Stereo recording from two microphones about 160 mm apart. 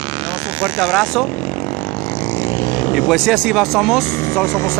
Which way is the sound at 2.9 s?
Centre (ahead or behind).